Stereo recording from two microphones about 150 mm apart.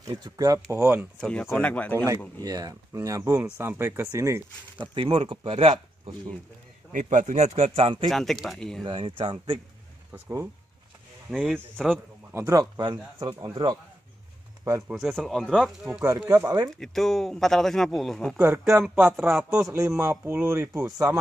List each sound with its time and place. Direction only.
0.0 s speech: 25° right (ahead or behind)
1.2 s speech: 5° left (ahead or behind)
2.4 s speech: 25° right (ahead or behind)
4.9 s speech: 35° right (ahead or behind)
6.9 s speech: 55° right (ahead or behind)
8.1 s speech: centre (ahead or behind)
8.8 s speech: 35° right (ahead or behind)
10.2 s speech: 20° right (ahead or behind)
11.2 s speech: centre (ahead or behind)
12.4 s speech: 20° right (ahead or behind)
14.9 s speech: centre (ahead or behind)
15.9 s speech: 15° right (ahead or behind)
16.3 s speech: 25° right (ahead or behind)
16.6 s speech: centre (ahead or behind); by 21.2 s 20° right (ahead or behind)